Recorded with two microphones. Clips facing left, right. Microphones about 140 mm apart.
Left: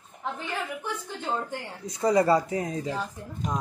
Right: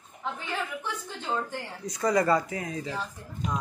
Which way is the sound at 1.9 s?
25° left (ahead or behind).